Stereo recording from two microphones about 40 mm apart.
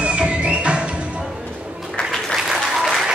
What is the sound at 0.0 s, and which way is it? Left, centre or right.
Music, right.